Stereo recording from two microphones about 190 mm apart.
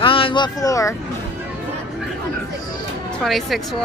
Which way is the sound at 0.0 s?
25° left (ahead or behind).